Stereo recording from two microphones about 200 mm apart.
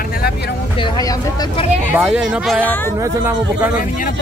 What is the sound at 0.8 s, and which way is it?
Speech, 20° left (ahead or behind).